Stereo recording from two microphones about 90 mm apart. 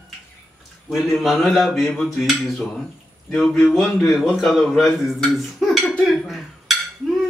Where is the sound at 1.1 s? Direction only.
Centre (ahead or behind).